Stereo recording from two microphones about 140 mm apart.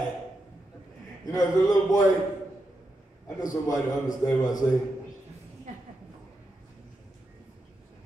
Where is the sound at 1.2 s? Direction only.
25° left (ahead or behind).